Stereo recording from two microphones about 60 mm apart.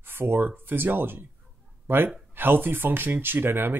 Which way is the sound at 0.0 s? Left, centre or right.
Right.